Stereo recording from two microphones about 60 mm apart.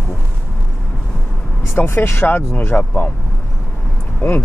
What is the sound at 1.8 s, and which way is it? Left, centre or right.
Speech, left.